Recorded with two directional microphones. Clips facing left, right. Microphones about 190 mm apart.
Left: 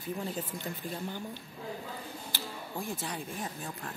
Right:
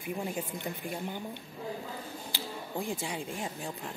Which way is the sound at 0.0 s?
10° right (ahead or behind).